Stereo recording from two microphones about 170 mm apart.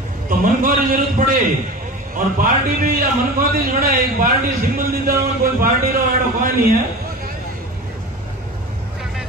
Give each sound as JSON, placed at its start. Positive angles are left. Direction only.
{"t": 0.3, "sound": "a man's voice", "side_deg": -55}